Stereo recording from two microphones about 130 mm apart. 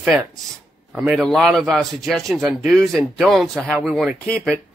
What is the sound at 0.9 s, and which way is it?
Speech, 5° right (ahead or behind).